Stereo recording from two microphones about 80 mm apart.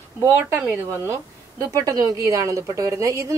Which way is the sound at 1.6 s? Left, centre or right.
Right.